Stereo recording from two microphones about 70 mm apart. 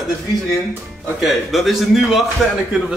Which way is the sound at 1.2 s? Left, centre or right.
Centre.